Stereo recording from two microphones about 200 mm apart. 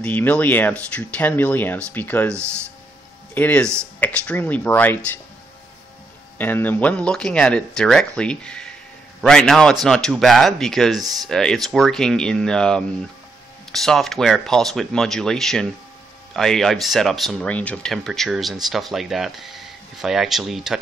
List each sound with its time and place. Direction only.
0.0 s speech: 10° left (ahead or behind)
2.3 s speech: 15° right (ahead or behind)
3.3 s speech: 10° left (ahead or behind)
6.3 s speech: 10° left (ahead or behind)
11.0 s speech: 20° right (ahead or behind)
11.2 s speech: centre (ahead or behind)